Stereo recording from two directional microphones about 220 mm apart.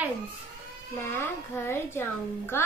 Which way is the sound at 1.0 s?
10° left (ahead or behind).